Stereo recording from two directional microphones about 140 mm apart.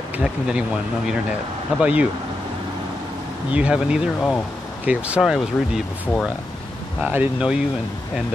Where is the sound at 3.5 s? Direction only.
10° right (ahead or behind).